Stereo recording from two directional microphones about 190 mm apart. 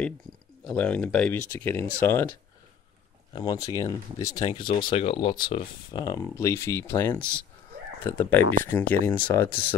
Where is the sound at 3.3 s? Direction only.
20° left (ahead or behind).